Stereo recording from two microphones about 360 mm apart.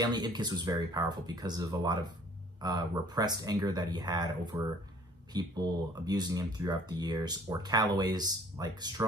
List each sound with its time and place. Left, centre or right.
0.0 s speech: centre